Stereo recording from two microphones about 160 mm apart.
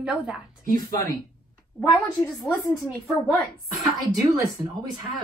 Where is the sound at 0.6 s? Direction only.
60° right (ahead or behind).